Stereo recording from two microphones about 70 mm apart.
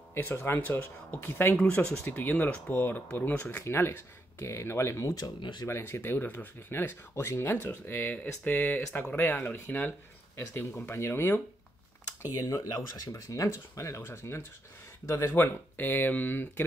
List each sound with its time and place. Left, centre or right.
0.1 s speech: left
1.6 s speech: centre
3.6 s speech: left
5.0 s speech: left
5.7 s speech: left
10.3 s speech: left
12.3 s speech: left
15.3 s speech: left